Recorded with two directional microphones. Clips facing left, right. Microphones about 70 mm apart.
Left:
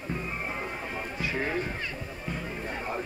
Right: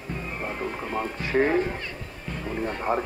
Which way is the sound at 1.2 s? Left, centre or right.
Right.